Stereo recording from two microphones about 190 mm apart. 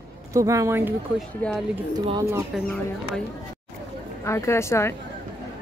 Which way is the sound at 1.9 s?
25° right (ahead or behind).